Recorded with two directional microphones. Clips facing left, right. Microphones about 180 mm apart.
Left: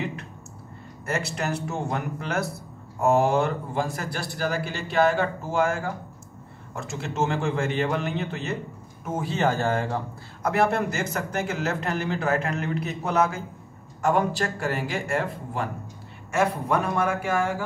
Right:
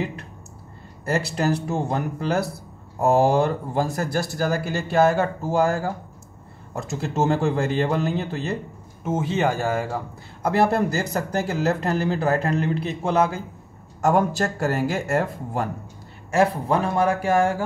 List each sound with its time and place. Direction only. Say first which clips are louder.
1.0 s speech: right 5 dB; 35° right (ahead or behind)
9.0 s speech: right 3 dB; 20° right (ahead or behind)
10.4 s speech: right 3 dB; 30° right (ahead or behind)
14.0 s speech: right 3 dB; 45° right (ahead or behind)